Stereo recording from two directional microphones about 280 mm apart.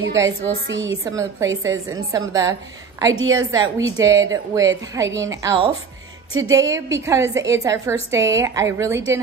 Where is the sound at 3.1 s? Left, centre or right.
Right.